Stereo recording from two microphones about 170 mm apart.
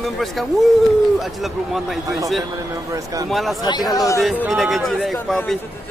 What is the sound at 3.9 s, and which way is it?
Speech, 20° left (ahead or behind).